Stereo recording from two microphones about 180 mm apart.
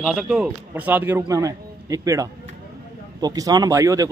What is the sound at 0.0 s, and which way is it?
A man's voice, 5° right (ahead or behind).